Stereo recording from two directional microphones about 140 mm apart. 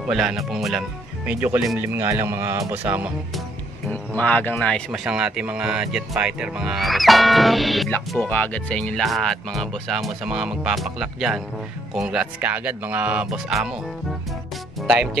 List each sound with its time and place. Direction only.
0.0 s speech: 5° right (ahead or behind)
3.9 s speech: 10° left (ahead or behind)
14.8 s music: 5° right (ahead or behind)